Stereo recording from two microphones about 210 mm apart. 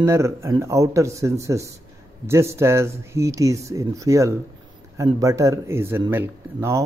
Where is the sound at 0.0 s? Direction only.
15° right (ahead or behind).